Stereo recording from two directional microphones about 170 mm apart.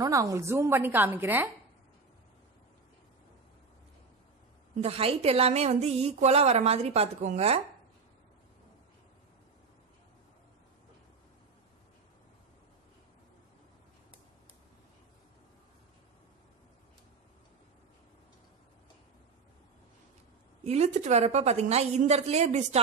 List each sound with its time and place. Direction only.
0.0 s speech: 20° right (ahead or behind)
4.8 s a woman's voice: 35° right (ahead or behind)
20.6 s a woman's voice: 40° right (ahead or behind)